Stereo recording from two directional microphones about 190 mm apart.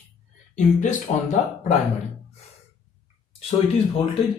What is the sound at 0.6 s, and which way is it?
Speech, 40° left (ahead or behind).